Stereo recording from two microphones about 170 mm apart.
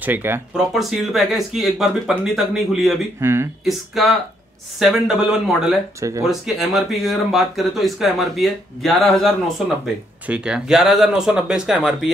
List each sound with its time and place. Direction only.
0.0 s speech: 10° right (ahead or behind)
0.7 s speech: centre (ahead or behind)
3.2 s speech: 15° right (ahead or behind)
3.6 s speech: centre (ahead or behind)
5.9 s speech: 20° right (ahead or behind)
6.2 s speech: centre (ahead or behind)